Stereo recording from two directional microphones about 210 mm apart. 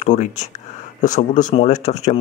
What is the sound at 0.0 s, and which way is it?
Speech, 35° left (ahead or behind).